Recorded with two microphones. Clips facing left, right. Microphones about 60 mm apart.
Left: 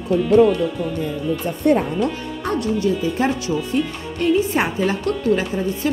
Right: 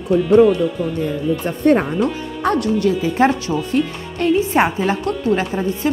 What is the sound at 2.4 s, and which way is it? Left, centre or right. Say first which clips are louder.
Speech: right 4 dB; right.